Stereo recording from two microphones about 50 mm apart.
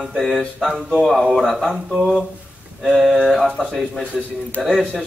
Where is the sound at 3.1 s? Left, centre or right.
Centre.